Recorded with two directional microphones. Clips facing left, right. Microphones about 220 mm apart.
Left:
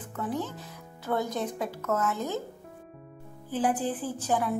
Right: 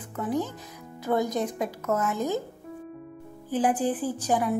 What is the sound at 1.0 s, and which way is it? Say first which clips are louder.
A woman's voice: right 4 dB; 15° right (ahead or behind).